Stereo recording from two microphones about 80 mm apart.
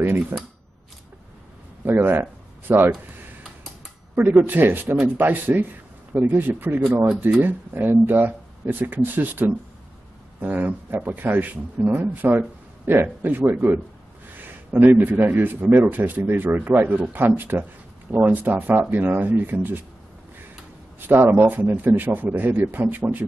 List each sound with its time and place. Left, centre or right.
0.3 s speech: right
1.9 s speech: right
4.1 s speech: right
21.1 s speech: right